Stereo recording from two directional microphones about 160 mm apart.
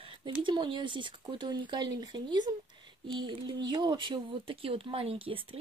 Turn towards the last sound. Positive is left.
turn(degrees=-35)  # may be behind; listen again after turning